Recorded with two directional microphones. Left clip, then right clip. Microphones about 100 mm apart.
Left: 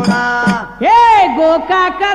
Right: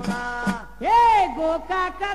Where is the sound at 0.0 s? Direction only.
40° right (ahead or behind).